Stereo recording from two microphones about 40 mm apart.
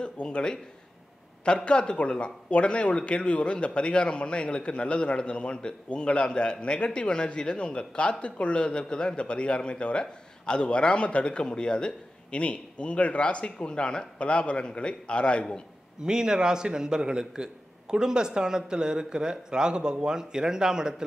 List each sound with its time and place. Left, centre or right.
0.0 s speech: left
16.0 s a man's voice: centre